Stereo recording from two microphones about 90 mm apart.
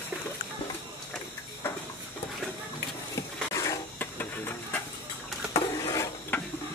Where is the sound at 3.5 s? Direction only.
40° left (ahead or behind).